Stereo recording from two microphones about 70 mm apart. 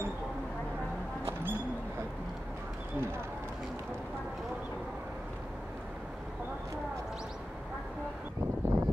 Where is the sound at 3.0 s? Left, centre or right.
Right.